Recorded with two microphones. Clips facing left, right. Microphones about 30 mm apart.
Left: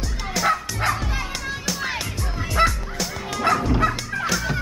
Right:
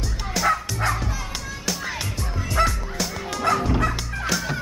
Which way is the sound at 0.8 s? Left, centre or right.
Left.